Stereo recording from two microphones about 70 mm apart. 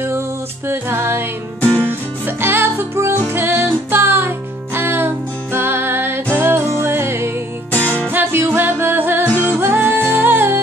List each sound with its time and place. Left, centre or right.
0.7 s music: right
7.7 s music: left
8.1 s music: right